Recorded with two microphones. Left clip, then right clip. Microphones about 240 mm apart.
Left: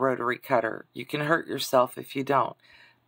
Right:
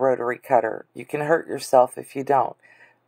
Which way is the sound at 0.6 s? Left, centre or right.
Centre.